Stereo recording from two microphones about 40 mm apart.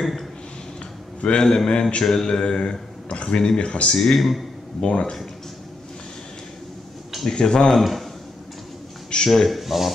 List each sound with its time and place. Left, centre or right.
1.2 s a man's voice: centre
3.9 s speech: centre
4.7 s a man's voice: left
7.2 s speech: centre
7.7 s speech: centre
9.3 s speech: centre